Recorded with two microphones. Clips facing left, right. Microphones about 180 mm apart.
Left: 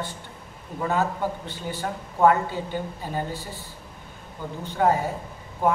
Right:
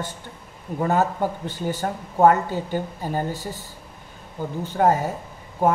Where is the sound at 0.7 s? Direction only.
45° right (ahead or behind).